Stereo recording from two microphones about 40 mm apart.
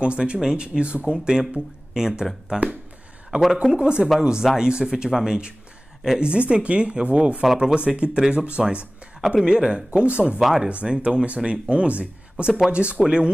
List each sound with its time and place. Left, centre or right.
0.0 s speech: right
3.3 s speech: centre
3.7 s speech: right
7.5 s speech: centre
7.8 s speech: right
10.4 s speech: centre
10.7 s speech: right